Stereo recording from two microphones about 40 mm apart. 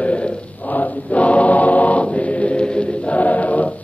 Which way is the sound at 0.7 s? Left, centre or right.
Left.